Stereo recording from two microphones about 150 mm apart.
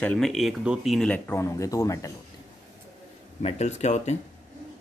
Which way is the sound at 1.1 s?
15° left (ahead or behind).